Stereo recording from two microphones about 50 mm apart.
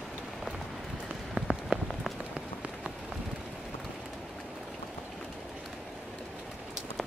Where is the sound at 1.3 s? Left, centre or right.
Centre.